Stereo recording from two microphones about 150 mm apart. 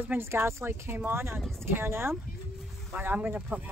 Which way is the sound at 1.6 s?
15° right (ahead or behind).